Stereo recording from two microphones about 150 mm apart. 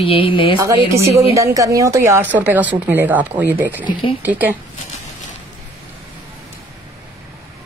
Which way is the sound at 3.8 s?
35° left (ahead or behind).